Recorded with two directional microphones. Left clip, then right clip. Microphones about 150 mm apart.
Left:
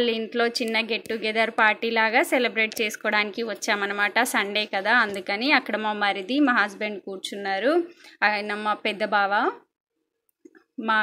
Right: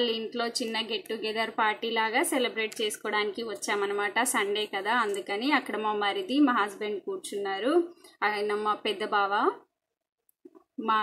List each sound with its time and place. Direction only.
0.0 s a woman's voice: 25° left (ahead or behind)